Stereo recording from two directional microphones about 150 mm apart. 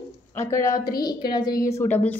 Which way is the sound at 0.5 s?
20° left (ahead or behind).